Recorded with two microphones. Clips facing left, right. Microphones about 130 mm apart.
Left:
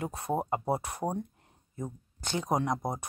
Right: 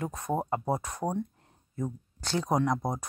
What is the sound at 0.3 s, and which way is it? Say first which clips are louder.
Speech: even; 10° left (ahead or behind).